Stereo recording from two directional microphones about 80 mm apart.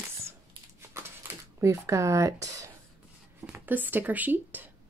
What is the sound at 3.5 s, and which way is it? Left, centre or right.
Speech, right.